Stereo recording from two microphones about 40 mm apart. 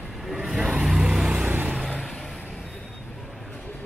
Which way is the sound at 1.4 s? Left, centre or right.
Right.